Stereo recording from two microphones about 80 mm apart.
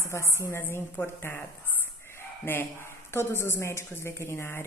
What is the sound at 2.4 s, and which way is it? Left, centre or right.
A woman's voice, left.